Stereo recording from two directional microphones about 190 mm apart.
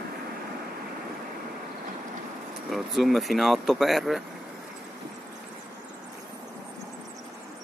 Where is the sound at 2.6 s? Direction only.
Centre (ahead or behind).